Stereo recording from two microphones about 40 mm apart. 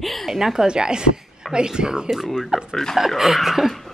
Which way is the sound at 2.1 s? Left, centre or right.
Centre.